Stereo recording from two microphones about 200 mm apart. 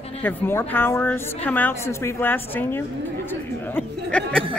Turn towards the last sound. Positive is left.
turn(degrees=5)  # may be behind; listen again after turning